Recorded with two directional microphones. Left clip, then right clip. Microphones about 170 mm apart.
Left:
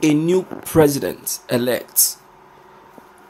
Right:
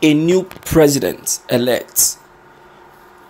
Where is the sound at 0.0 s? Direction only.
Centre (ahead or behind).